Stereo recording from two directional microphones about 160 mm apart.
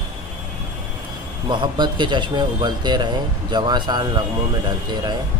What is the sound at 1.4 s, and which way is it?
Speech, 30° right (ahead or behind).